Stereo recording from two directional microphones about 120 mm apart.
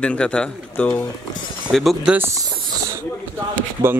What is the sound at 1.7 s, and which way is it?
Speech, centre (ahead or behind).